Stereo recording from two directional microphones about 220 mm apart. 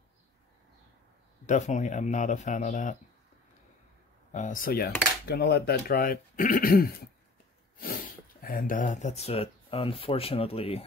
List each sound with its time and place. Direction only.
1.4 s speech: 35° left (ahead or behind)
4.3 s speech: 35° left (ahead or behind)